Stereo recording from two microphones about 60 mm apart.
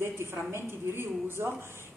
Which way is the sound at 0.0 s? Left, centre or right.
Right.